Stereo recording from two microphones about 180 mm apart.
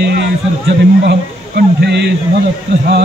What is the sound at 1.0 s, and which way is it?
Speech, 65° right (ahead or behind).